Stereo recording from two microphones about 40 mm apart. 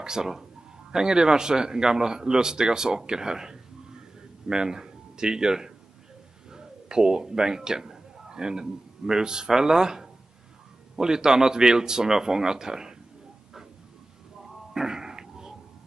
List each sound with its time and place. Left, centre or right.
0.0 s a man's voice: centre
14.4 s music: centre